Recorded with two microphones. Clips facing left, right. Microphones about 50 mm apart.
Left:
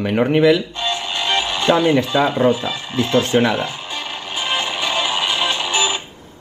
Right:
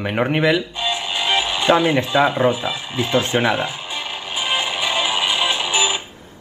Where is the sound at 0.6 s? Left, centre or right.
Centre.